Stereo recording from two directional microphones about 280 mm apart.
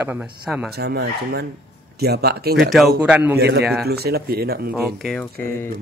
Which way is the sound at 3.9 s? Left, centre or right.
Right.